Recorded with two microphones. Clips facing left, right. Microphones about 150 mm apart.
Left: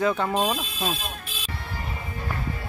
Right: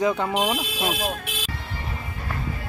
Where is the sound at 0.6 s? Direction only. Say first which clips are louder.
Right 3 dB; 80° right.